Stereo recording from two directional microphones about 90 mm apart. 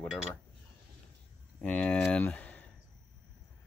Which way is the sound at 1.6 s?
15° left (ahead or behind).